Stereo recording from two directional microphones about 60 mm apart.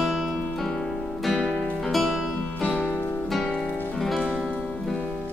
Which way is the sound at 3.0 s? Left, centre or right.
Left.